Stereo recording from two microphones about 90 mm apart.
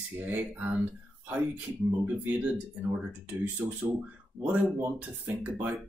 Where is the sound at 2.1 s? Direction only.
15° right (ahead or behind).